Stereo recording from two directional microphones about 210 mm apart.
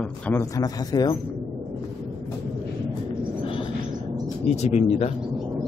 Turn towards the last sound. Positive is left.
turn(degrees=30)  # may be behind; listen again after turning